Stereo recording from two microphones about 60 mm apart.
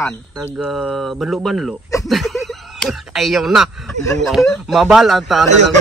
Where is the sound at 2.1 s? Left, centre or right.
Centre.